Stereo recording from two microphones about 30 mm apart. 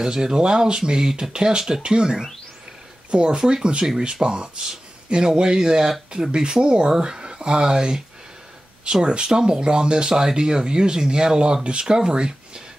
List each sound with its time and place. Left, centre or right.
0.0 s speech: right
3.1 s speech: right
6.6 s speech: right
9.0 s speech: right
10.0 s speech: centre